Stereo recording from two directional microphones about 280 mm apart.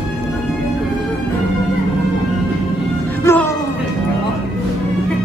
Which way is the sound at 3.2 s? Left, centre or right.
Centre.